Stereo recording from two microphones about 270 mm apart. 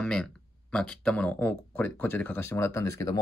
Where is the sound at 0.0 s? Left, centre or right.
Centre.